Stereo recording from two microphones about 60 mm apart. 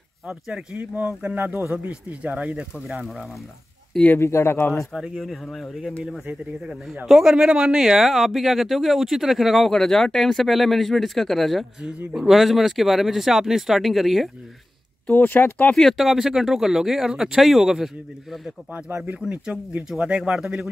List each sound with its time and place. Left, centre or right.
0.3 s speech: centre
1.3 s speech: right
1.9 s speech: right
2.7 s speech: centre
4.2 s speech: left
4.9 s speech: centre
7.1 s speech: centre
15.0 s speech: left
15.7 s speech: centre
16.0 s speech: centre
19.1 s speech: centre
20.1 s speech: centre